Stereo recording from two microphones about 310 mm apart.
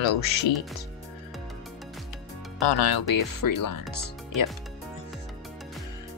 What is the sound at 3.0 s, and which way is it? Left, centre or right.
Speech, left.